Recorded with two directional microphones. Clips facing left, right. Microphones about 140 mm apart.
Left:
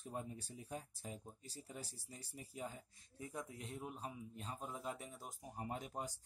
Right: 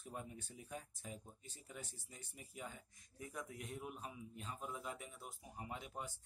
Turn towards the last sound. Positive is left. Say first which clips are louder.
# left 3 dB
turn(degrees=40)  # may be behind; listen again after turning